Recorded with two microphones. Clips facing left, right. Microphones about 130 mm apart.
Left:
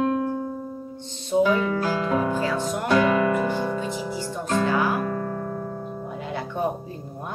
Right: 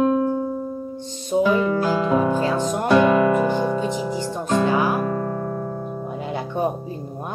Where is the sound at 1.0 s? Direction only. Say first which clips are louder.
Even; 15° right (ahead or behind).